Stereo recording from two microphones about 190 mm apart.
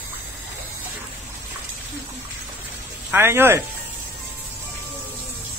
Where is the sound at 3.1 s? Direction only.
10° right (ahead or behind).